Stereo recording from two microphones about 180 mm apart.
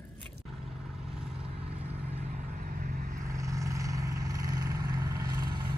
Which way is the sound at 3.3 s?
15° right (ahead or behind).